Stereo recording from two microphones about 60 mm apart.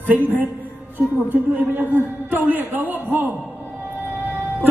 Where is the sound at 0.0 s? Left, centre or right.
Right.